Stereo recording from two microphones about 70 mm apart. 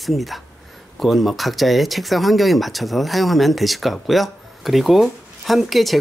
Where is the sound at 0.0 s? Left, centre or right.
Centre.